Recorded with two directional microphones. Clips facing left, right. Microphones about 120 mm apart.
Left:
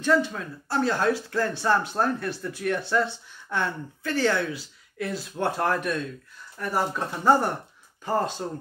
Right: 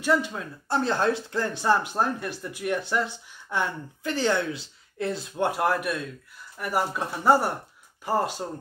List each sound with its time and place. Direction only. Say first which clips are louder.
0.0 s speech: left 2 dB; 15° right (ahead or behind)